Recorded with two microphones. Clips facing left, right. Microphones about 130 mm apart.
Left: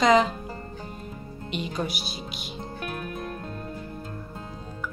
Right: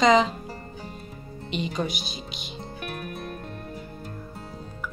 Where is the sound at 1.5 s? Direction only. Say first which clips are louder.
Right 2 dB; 5° left (ahead or behind).